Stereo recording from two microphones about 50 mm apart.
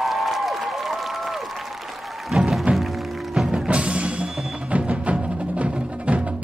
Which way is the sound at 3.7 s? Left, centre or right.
Right.